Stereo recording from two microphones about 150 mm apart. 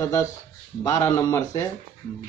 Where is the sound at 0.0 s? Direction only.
20° left (ahead or behind).